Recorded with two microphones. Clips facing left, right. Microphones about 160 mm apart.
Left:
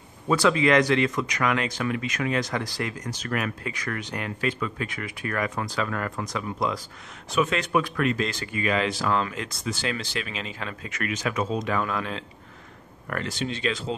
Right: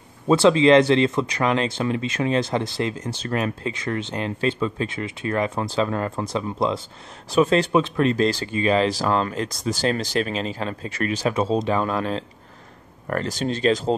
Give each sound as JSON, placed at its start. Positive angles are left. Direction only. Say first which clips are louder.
{"t": 0.3, "sound": "speech", "louder": "right 6 dB", "side_deg": -25}